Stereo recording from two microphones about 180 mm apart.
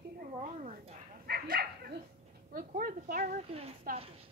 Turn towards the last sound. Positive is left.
turn(degrees=-35)  # may be behind; listen again after turning